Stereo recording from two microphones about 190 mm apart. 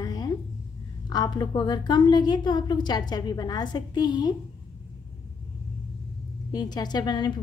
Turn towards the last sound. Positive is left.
turn(degrees=25)  # may be behind; listen again after turning